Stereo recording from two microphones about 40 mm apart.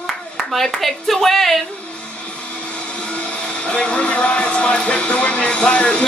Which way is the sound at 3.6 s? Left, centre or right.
Left.